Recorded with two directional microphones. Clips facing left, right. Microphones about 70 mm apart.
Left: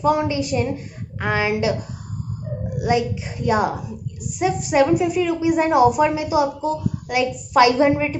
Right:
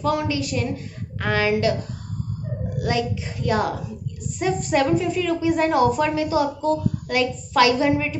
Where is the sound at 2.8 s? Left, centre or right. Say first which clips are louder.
Left 4 dB; centre.